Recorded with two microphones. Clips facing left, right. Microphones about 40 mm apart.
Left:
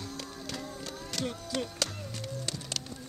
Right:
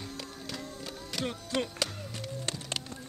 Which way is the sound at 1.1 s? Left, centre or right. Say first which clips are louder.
Right 2 dB; centre.